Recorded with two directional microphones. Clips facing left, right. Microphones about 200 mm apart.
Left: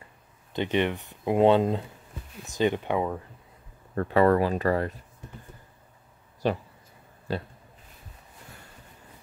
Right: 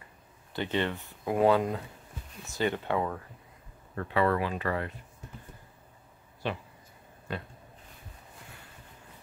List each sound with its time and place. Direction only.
0.5 s speech: 20° left (ahead or behind)
3.9 s speech: 40° left (ahead or behind)
6.4 s speech: 40° left (ahead or behind)